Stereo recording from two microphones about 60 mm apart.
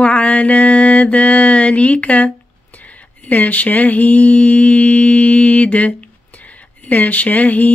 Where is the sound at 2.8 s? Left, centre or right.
Left.